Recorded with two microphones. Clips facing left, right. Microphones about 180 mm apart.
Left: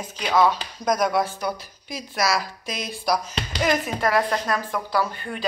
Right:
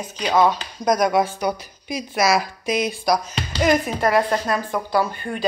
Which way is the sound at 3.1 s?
Centre (ahead or behind).